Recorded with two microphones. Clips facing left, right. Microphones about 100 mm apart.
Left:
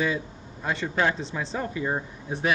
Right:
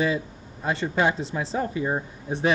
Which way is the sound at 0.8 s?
15° right (ahead or behind).